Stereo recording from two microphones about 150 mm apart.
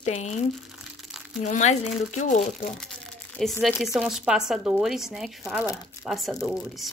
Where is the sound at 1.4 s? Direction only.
50° left (ahead or behind).